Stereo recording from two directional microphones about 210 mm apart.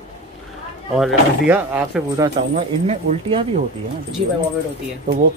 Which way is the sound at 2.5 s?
25° right (ahead or behind).